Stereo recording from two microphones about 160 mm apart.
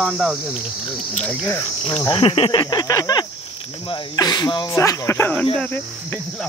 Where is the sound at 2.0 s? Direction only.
35° left (ahead or behind).